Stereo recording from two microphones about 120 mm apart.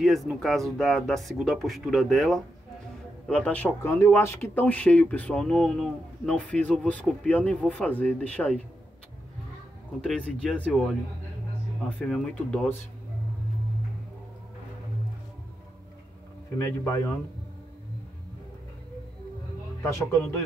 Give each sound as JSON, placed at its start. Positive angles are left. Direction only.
{"t": 0.0, "sound": "speech", "side_deg": 0}
{"t": 10.0, "sound": "speech", "side_deg": 5}
{"t": 12.0, "sound": "speech", "side_deg": 5}
{"t": 16.5, "sound": "speech", "side_deg": 25}